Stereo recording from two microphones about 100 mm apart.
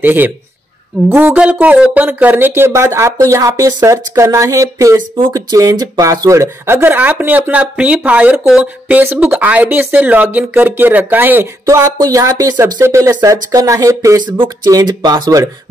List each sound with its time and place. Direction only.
0.0 s speech: 20° right (ahead or behind)
4.9 s speech: 60° right (ahead or behind)
5.3 s speech: 35° right (ahead or behind); by 11.4 s 20° right (ahead or behind)
11.6 s speech: 35° right (ahead or behind)